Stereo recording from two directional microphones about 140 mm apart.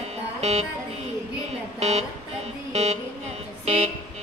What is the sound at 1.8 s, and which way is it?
Speech, 50° right (ahead or behind).